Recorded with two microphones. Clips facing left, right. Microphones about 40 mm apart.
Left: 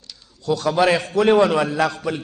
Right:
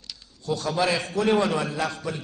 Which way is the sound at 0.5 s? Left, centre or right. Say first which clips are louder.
Left 7 dB; left.